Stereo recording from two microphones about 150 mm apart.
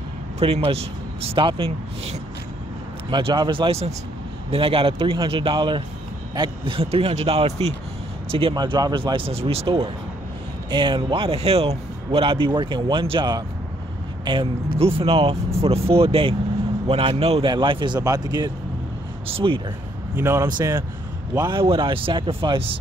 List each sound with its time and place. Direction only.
0.4 s a man's voice: 40° right (ahead or behind)
20.2 s speech: 15° right (ahead or behind)
20.4 s a man's voice: 25° right (ahead or behind)